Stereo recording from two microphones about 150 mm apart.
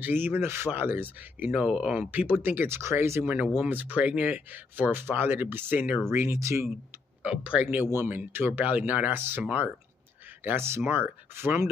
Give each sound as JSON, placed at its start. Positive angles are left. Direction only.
{"t": 0.0, "sound": "speech", "side_deg": -15}